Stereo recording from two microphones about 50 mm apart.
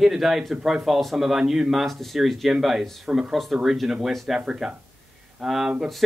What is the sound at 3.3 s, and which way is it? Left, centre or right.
Speech, centre.